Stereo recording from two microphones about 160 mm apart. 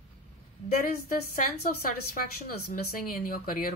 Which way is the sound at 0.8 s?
60° left (ahead or behind).